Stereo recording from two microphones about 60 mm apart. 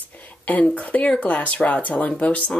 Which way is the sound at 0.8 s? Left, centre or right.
Left.